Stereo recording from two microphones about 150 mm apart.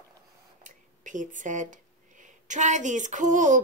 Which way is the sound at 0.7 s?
55° right (ahead or behind).